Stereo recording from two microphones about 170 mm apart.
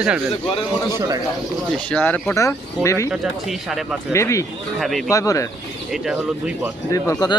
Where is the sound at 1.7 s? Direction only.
10° left (ahead or behind).